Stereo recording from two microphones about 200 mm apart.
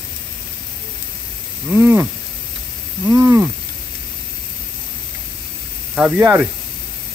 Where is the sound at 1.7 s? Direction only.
15° right (ahead or behind).